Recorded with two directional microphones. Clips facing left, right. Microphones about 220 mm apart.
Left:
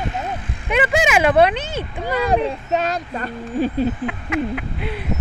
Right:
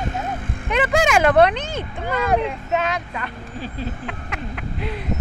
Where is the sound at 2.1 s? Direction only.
35° left (ahead or behind).